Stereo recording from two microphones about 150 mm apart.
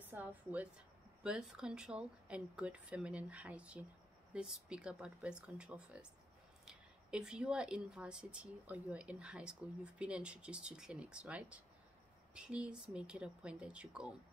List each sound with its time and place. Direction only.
0.1 s speech: 10° right (ahead or behind)